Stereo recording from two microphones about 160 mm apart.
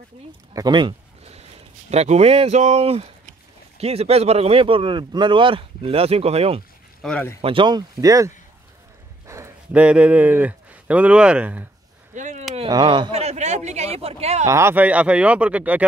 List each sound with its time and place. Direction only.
0.5 s speech: 25° right (ahead or behind)
7.0 s speech: 5° left (ahead or behind)
7.4 s speech: 30° right (ahead or behind)
9.3 s speech: 15° right (ahead or behind)
12.1 s a sound: 50° right (ahead or behind)
12.5 s a sound: 30° right (ahead or behind)
14.4 s speech: 15° right (ahead or behind)